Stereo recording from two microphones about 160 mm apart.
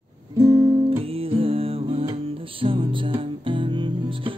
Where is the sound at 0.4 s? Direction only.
20° right (ahead or behind).